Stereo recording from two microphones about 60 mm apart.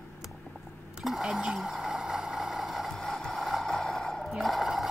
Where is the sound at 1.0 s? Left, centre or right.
Centre.